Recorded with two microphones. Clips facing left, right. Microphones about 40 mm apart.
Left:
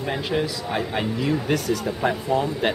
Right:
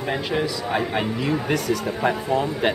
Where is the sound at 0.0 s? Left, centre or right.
Centre.